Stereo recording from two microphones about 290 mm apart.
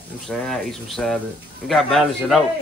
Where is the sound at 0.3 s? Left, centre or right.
Centre.